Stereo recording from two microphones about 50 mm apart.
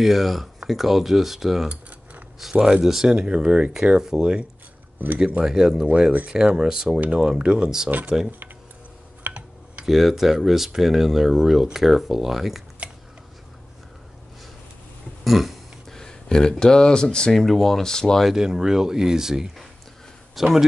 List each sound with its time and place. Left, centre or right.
0.0 s speech: centre
1.7 s a sound: right
2.6 s speech: centre
5.0 s speech: right
5.4 s speech: centre
6.1 s speech: right
9.3 s computer keyboard: right
9.8 s speech: centre
15.2 s throat clearing: centre
15.9 s speech: centre
17.4 s speech: centre
18.2 s speech: centre